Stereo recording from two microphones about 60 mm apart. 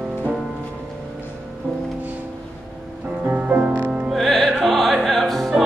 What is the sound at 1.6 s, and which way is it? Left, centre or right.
Music, right.